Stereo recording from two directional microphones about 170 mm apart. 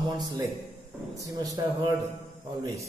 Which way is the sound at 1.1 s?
20° right (ahead or behind).